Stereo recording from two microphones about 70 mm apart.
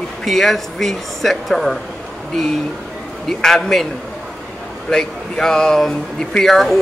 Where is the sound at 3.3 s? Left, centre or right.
Centre.